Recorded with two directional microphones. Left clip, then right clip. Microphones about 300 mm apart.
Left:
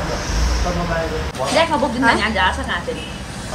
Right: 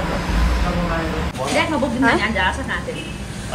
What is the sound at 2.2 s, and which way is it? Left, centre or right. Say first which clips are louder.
Speech: left 2 dB; left.